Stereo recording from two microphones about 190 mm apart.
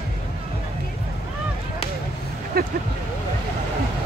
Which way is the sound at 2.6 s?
55° right (ahead or behind).